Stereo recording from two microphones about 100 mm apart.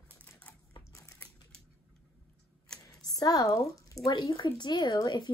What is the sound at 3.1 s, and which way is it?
Speech, 40° left (ahead or behind).